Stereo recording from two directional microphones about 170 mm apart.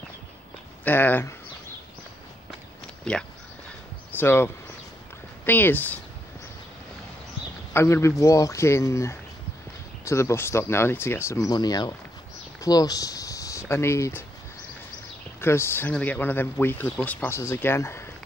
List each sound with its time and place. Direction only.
0.8 s speech: 10° left (ahead or behind)
3.1 s speech: 5° left (ahead or behind)
7.7 s speech: 15° left (ahead or behind)
15.4 s speech: 15° left (ahead or behind)